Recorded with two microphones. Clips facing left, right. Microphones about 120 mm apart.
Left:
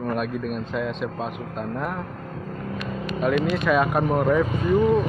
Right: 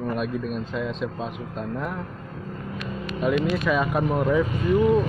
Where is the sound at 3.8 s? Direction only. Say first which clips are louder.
Left 2 dB; 50° left (ahead or behind).